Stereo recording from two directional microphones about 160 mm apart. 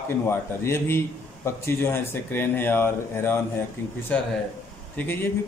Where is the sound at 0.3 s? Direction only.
15° left (ahead or behind).